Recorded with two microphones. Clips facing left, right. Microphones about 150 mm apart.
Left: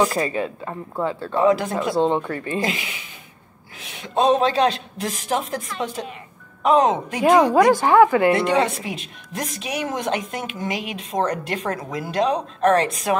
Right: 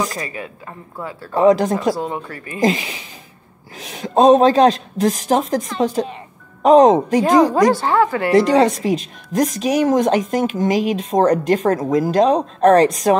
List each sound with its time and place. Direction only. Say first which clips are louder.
0.0 s speech: left 4 dB; 35° left (ahead or behind)
1.4 s speech: right 5 dB; 40° right (ahead or behind)
2.0 s speech: left 5 dB; 25° left (ahead or behind)
2.6 s speech: right 8 dB; 40° right (ahead or behind)
7.7 s speech: left 2 dB; 15° left (ahead or behind)
8.3 s speech: right 5 dB; 35° right (ahead or behind)